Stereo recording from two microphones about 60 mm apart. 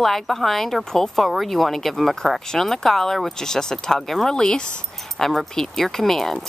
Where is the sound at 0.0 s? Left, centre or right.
Centre.